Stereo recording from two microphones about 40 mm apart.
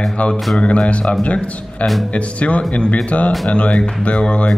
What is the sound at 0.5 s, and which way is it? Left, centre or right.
A man's voice, left.